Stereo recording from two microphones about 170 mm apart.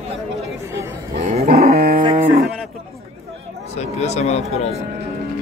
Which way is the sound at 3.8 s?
40° left (ahead or behind).